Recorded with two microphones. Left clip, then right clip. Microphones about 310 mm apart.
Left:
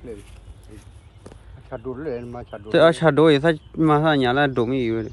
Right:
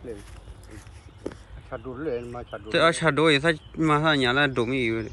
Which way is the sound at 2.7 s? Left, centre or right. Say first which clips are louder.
Left 5 dB; centre.